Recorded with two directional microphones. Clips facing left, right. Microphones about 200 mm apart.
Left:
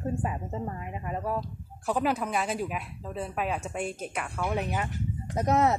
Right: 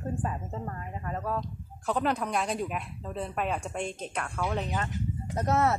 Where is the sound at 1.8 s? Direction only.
5° left (ahead or behind).